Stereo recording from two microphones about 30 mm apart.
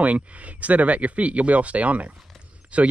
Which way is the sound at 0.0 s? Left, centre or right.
Right.